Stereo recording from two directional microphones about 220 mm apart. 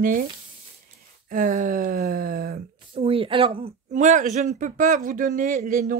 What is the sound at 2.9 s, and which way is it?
Speech, 25° right (ahead or behind).